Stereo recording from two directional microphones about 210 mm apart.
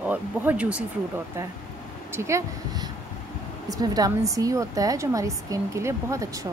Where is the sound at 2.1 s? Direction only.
15° right (ahead or behind).